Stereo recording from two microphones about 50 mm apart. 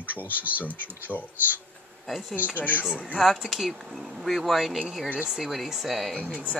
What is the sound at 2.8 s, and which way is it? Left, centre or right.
Speech, centre.